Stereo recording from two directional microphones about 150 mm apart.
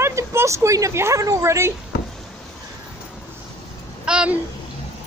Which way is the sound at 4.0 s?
5° right (ahead or behind).